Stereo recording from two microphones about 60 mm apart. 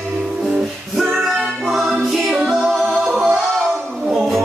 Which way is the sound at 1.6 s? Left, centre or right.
Centre.